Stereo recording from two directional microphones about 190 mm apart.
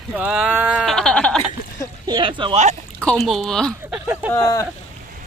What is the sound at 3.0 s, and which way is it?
Speech, 5° left (ahead or behind).